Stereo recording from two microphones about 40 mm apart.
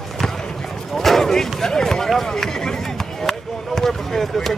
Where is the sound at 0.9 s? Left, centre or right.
Centre.